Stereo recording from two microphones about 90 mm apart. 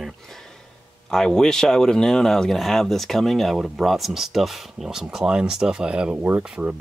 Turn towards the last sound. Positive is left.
turn(degrees=-15)  # may be behind; listen again after turning